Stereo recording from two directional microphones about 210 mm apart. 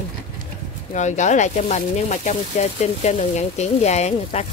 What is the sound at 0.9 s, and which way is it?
Speech, 35° left (ahead or behind).